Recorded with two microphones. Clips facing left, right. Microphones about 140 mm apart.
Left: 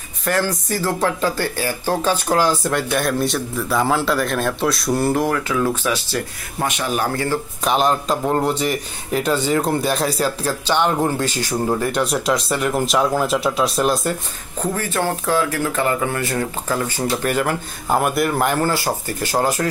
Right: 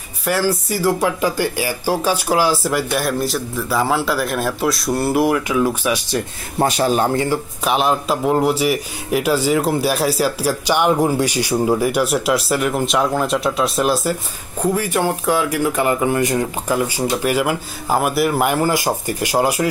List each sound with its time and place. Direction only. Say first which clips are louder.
0.2 s a man's voice: right 2 dB; 10° right (ahead or behind)
6.6 s speech: right 5 dB; 35° right (ahead or behind)
7.6 s a man's voice: even; 5° right (ahead or behind)